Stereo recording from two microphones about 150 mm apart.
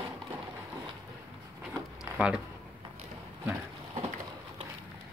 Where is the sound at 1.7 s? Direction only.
5° right (ahead or behind).